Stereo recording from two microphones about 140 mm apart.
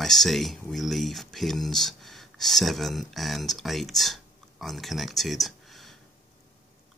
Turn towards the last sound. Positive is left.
turn(degrees=0)  # may be behind; listen again after turning